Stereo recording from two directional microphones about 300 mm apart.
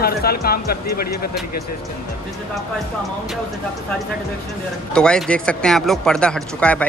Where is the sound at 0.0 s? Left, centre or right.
Left.